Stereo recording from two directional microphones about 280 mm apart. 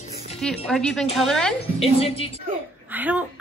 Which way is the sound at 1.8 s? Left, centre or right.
Left.